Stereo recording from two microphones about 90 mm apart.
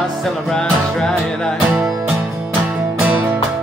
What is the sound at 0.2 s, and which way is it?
Music, 5° left (ahead or behind).